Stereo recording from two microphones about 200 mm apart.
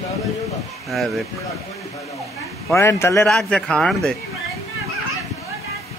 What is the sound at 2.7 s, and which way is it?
Speech, 15° left (ahead or behind).